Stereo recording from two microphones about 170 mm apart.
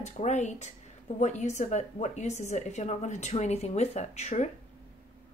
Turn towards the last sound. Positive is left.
turn(degrees=40)  # may be behind; listen again after turning